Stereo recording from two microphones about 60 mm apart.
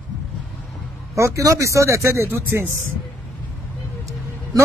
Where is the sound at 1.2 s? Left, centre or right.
Right.